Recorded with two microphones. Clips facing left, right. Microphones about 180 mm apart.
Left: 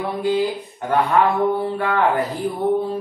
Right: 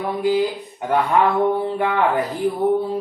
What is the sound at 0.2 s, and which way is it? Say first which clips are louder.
Speech: right 1 dB; 15° right (ahead or behind).